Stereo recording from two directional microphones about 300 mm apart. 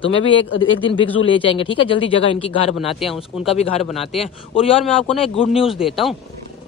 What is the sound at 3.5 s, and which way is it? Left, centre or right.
Speech, left.